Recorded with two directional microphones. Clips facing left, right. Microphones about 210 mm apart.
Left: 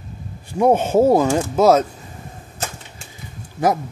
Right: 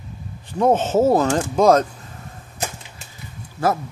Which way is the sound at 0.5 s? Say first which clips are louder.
Left 2 dB; 10° left (ahead or behind).